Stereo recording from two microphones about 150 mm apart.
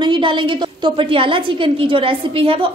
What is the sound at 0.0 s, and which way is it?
A woman's voice, 30° right (ahead or behind).